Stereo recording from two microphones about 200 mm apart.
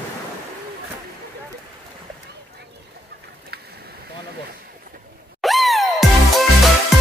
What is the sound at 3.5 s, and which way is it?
Boat, 55° right (ahead or behind).